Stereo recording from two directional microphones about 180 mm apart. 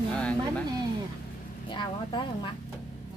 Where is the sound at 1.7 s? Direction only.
25° left (ahead or behind).